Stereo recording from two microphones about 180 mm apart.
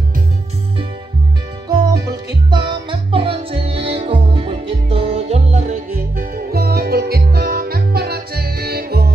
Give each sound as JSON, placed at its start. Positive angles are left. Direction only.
{"t": 1.7, "sound": "music", "side_deg": -25}